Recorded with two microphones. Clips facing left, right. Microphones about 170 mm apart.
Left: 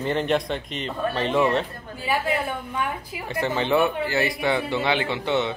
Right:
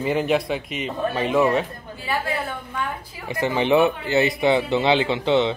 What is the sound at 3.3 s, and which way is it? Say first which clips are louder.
Speech: right 3 dB; 15° right (ahead or behind).